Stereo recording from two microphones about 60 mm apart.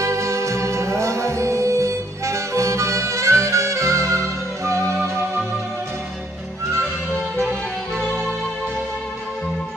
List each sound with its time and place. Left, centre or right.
0.0 s music: right